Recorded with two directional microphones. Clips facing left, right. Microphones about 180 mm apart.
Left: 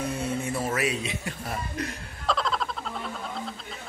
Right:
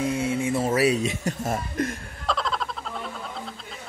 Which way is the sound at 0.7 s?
40° right (ahead or behind).